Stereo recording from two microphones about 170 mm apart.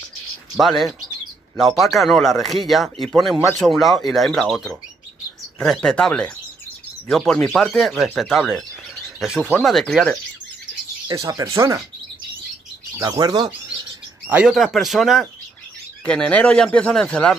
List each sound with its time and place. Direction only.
0.6 s speech: centre (ahead or behind)
11.2 s speech: 20° right (ahead or behind)
12.9 s speech: 20° right (ahead or behind)
14.3 s speech: 5° right (ahead or behind)